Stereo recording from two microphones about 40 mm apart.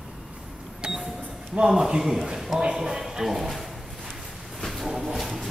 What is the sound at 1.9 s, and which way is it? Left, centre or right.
A man's voice, centre.